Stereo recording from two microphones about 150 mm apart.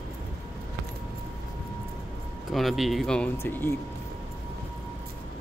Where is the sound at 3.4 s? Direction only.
15° left (ahead or behind).